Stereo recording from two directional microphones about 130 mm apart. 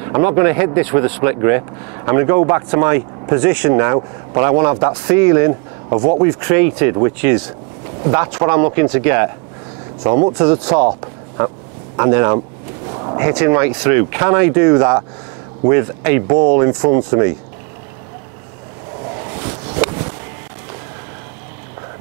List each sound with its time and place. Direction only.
0.0 s speech: 25° right (ahead or behind)
6.4 s speech: 20° right (ahead or behind)